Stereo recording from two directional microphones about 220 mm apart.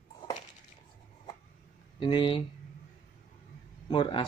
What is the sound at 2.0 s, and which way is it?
Speech, 20° left (ahead or behind).